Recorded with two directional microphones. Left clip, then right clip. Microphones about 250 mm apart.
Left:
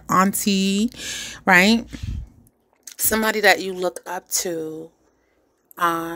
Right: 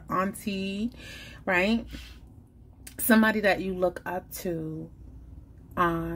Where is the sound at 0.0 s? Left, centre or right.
Left.